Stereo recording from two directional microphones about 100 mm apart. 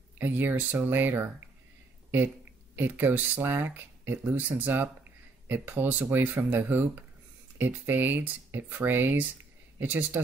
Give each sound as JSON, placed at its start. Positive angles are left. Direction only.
{"t": 0.2, "sound": "speech", "side_deg": -20}
{"t": 2.7, "sound": "speech", "side_deg": -20}